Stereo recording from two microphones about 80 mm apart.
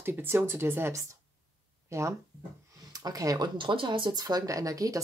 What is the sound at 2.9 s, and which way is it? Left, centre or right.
Speech, right.